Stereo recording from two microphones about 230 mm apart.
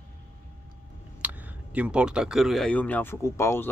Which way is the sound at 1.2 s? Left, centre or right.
Centre.